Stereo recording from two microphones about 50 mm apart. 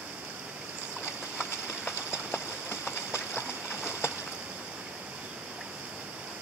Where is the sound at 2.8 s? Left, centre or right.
Right.